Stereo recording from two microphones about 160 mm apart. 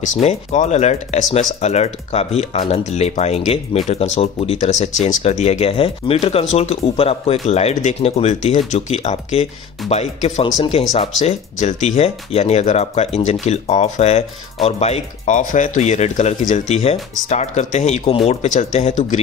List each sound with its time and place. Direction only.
0.0 s speech: 45° left (ahead or behind)